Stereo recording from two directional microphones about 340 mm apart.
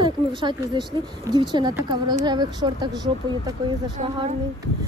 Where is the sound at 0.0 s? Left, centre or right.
Centre.